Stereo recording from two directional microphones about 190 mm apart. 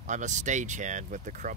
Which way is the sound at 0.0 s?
40° right (ahead or behind).